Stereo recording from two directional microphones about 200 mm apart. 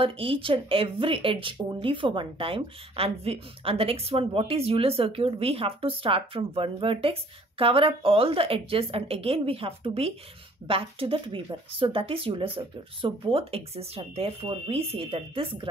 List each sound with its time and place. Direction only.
0.0 s speech: 25° right (ahead or behind)